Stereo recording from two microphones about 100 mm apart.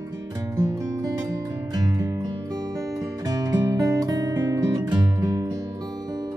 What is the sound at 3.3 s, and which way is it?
Music, 35° right (ahead or behind).